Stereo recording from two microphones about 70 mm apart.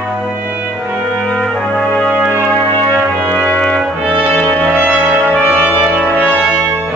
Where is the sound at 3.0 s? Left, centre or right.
Right.